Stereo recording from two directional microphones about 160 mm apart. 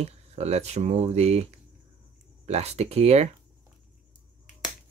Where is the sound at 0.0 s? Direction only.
40° right (ahead or behind).